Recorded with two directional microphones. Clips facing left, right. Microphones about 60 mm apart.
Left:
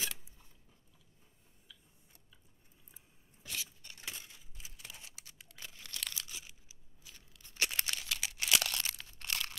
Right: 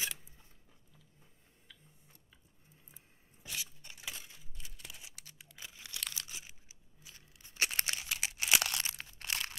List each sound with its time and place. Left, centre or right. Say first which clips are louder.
3.4 s a sound: even; centre
5.7 s crumpling: even; centre
7.0 s tearing: right 1 dB; right
9.0 s crunch: even; right